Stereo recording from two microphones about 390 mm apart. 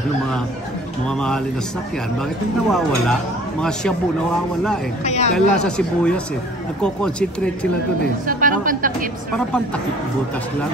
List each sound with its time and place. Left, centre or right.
1.0 s speech: centre
2.7 s speech: centre
5.0 s speech: centre
5.3 s speech: centre
8.3 s a woman's voice: right